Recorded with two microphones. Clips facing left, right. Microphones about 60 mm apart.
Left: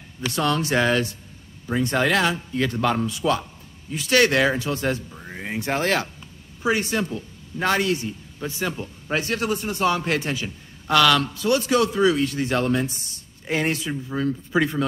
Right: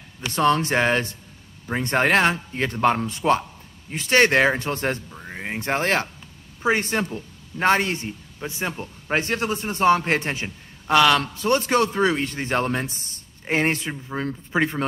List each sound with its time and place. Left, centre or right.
0.3 s speech: right
5.1 s a sound: centre
5.4 s speech: right